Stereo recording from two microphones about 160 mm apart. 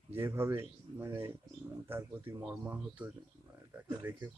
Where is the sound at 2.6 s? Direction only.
10° right (ahead or behind).